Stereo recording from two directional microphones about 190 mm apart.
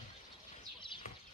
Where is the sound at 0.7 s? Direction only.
25° left (ahead or behind).